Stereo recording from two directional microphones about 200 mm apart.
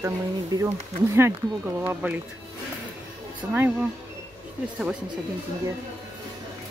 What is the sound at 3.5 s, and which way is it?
Speech, 5° right (ahead or behind).